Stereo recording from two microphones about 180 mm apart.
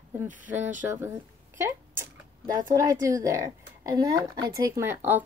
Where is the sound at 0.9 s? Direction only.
15° right (ahead or behind).